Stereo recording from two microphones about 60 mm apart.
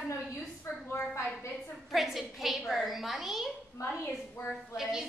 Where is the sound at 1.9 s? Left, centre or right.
Centre.